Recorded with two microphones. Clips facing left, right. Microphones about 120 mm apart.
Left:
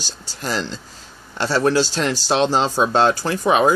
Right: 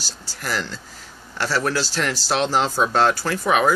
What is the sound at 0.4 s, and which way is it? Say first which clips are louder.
Speech: left 3 dB; 20° left (ahead or behind).